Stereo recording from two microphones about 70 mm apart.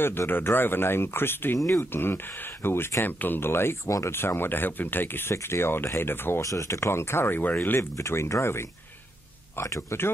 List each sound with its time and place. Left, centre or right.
0.3 s speech: left
6.4 s speech: left
7.9 s speech: left